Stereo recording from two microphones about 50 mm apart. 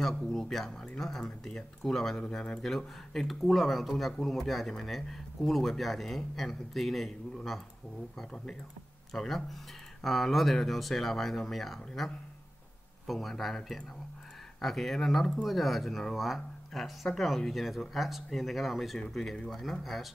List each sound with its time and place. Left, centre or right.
0.0 s speech: centre
2.1 s speech: centre
2.6 s speech: centre
8.2 s speech: centre